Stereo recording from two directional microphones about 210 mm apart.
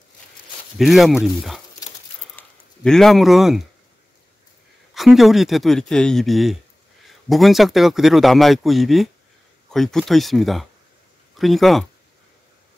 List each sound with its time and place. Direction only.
0.7 s speech: centre (ahead or behind)
1.8 s a sound: 15° left (ahead or behind)
2.3 s speech: 5° left (ahead or behind)
4.9 s speech: centre (ahead or behind)